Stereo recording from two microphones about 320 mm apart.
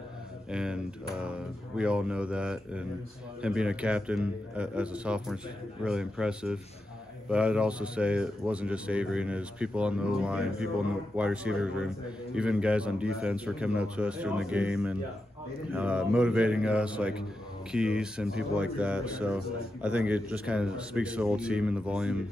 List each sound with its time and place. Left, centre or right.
0.5 s speech: centre